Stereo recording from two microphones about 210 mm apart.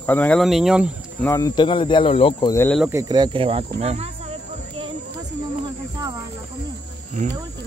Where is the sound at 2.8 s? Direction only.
15° right (ahead or behind); by 4.1 s 30° right (ahead or behind).